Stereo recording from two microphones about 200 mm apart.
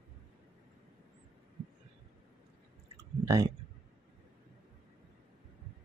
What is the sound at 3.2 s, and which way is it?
Speech, 15° right (ahead or behind).